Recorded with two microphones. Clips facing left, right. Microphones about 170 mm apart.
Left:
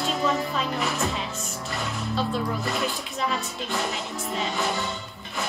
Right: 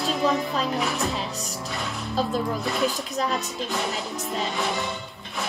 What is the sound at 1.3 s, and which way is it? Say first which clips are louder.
Music: right 1 dB; 40° right (ahead or behind).